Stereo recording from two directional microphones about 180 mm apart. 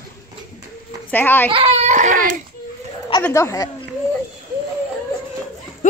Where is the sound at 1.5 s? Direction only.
35° right (ahead or behind).